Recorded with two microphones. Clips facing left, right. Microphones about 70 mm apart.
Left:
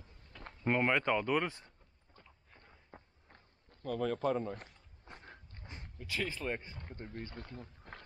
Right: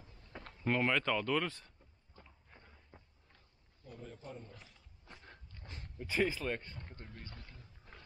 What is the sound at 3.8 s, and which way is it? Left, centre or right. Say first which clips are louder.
Speech: left 17 dB; left.